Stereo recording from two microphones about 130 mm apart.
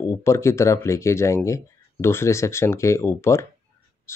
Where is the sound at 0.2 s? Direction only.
20° left (ahead or behind).